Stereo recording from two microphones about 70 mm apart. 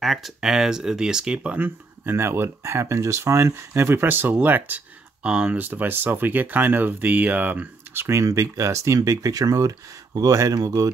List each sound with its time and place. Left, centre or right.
0.0 s speech: centre
2.0 s speech: right
5.2 s speech: centre
7.9 s speech: right